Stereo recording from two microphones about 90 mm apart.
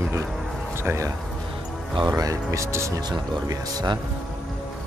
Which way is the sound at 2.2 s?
35° right (ahead or behind).